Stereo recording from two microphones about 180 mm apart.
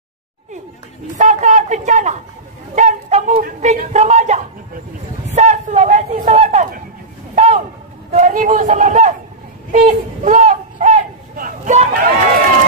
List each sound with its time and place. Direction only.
1.1 s a woman's voice: 40° right (ahead or behind)
5.3 s a sound: 40° right (ahead or behind)
8.1 s a woman's voice: 45° right (ahead or behind)